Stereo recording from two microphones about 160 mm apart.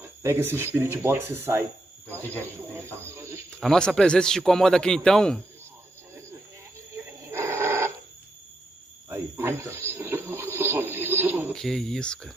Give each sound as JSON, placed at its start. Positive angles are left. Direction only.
{"t": 0.0, "sound": "speech", "side_deg": -15}
{"t": 3.0, "sound": "a sound", "side_deg": -15}
{"t": 3.4, "sound": "a man's voice", "side_deg": 5}
{"t": 7.1, "sound": "a sound", "side_deg": -15}
{"t": 9.1, "sound": "television", "side_deg": -15}
{"t": 11.5, "sound": "a man's voice", "side_deg": 5}